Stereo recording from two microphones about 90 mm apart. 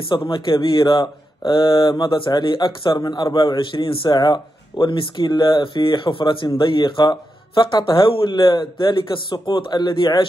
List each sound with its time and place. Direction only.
0.1 s speech: 60° left (ahead or behind)
3.0 s speech: 50° left (ahead or behind)
3.5 s speech: 70° left (ahead or behind)